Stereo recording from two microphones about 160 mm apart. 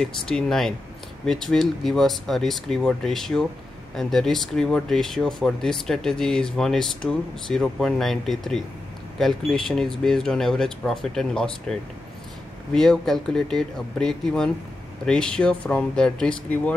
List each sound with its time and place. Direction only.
0.0 s speech: 5° left (ahead or behind)